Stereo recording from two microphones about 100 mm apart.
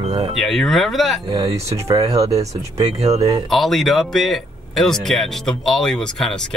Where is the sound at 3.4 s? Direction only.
Centre (ahead or behind).